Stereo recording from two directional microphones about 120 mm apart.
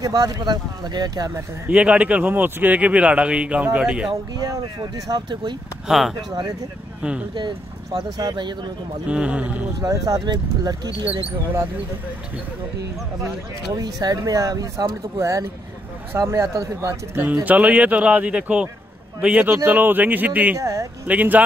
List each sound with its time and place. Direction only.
0.0 s speech: 30° right (ahead or behind)
1.7 s speech: 10° right (ahead or behind)
4.4 s speech: 30° right (ahead or behind)
5.9 s speech: centre (ahead or behind)
6.1 s speech: 30° right (ahead or behind)
9.0 s speech: 10° right (ahead or behind)
9.8 s speech: 30° right (ahead or behind)
13.7 s speech: 30° right (ahead or behind); by 20.5 s 15° right (ahead or behind)
20.5 s speech: 25° right (ahead or behind)
21.1 s speech: 15° right (ahead or behind)